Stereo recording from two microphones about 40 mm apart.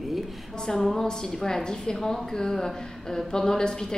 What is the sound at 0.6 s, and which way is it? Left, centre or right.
A woman's voice, centre.